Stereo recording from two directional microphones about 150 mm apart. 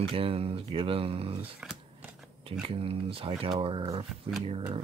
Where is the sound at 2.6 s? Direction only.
40° right (ahead or behind).